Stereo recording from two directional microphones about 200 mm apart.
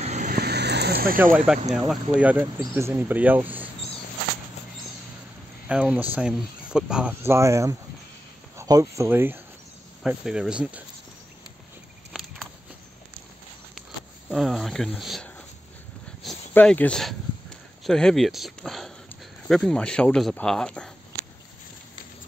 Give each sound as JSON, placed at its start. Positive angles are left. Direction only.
{"t": 0.0, "sound": "vehicle", "side_deg": -35}
{"t": 0.3, "sound": "vehicle", "side_deg": -55}
{"t": 1.2, "sound": "speech", "side_deg": -5}
{"t": 5.7, "sound": "speech", "side_deg": -5}
{"t": 12.1, "sound": "a sound", "side_deg": 0}
{"t": 14.3, "sound": "speech", "side_deg": 0}
{"t": 16.2, "sound": "a sound", "side_deg": 0}
{"t": 17.8, "sound": "speech", "side_deg": 0}